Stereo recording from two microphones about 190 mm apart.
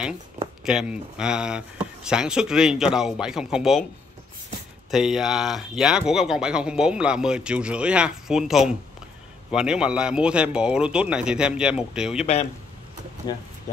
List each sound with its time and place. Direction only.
0.7 s speech: 5° right (ahead or behind)
4.9 s speech: 5° right (ahead or behind)
13.3 s speech: 20° left (ahead or behind)